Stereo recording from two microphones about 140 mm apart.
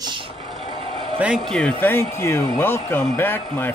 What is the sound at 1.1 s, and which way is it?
Speech, 10° right (ahead or behind).